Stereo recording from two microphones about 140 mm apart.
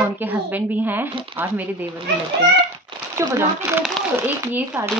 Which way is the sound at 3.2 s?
20° right (ahead or behind).